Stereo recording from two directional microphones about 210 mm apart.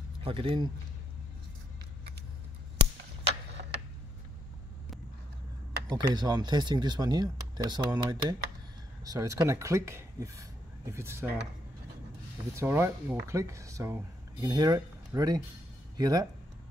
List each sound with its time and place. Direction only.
0.2 s speech: 25° right (ahead or behind)
5.9 s speech: 20° right (ahead or behind)
12.5 s speech: 10° right (ahead or behind)